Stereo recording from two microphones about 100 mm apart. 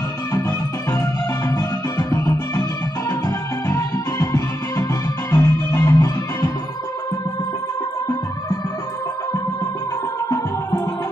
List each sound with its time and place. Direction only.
0.3 s music: 25° left (ahead or behind)